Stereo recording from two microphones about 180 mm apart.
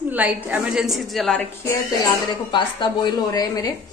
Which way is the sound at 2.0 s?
25° left (ahead or behind).